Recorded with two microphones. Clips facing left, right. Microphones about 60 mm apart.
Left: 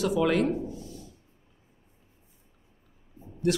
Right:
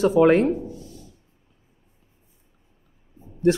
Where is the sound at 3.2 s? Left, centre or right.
Right.